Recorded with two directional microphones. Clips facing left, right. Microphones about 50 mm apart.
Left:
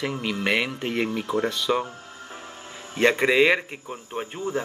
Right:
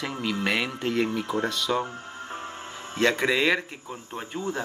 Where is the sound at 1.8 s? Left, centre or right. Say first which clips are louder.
Right 3 dB; right.